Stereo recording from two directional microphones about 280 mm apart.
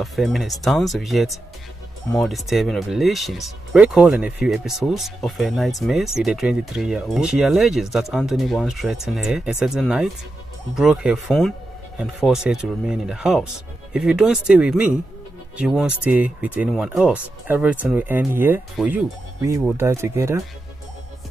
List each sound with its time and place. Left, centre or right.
0.0 s speech: centre